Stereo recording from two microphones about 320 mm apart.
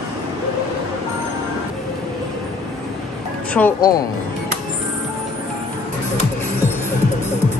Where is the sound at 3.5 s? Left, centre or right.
Centre.